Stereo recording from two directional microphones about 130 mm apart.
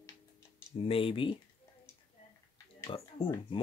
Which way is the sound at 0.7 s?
45° left (ahead or behind).